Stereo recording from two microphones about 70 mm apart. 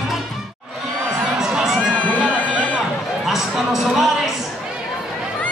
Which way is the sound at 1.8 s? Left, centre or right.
Centre.